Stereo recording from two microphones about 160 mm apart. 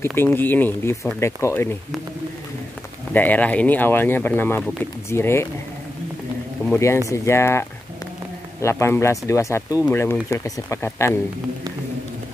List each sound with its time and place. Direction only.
0.0 s speech: 15° left (ahead or behind)
3.1 s speech: 10° left (ahead or behind)
6.7 s speech: 15° left (ahead or behind)